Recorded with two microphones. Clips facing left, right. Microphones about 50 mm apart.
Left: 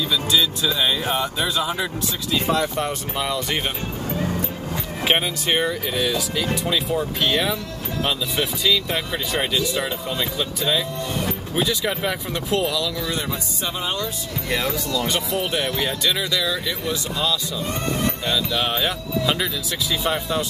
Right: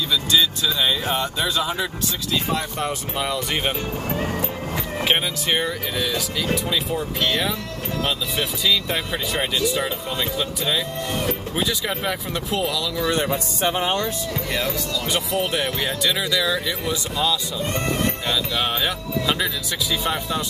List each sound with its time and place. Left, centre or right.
0.1 s speech: centre
5.0 s speech: centre
6.5 s speech: centre
13.1 s speech: right
15.0 s speech: centre
18.6 s speech: centre